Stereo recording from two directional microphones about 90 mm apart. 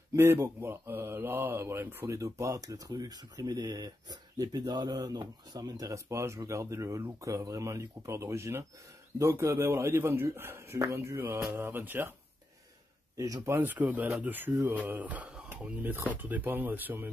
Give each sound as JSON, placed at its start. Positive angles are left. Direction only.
{"t": 0.1, "sound": "speech", "side_deg": -30}
{"t": 13.2, "sound": "speech", "side_deg": -40}
{"t": 13.6, "sound": "speech", "side_deg": -20}